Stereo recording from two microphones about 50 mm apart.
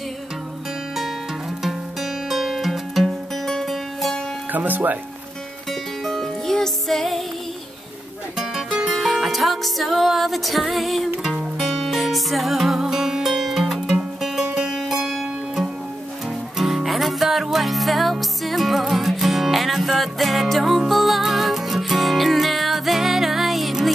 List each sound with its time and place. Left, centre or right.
1.6 s music: centre
4.5 s speech: right
5.7 s music: centre
8.9 s music: centre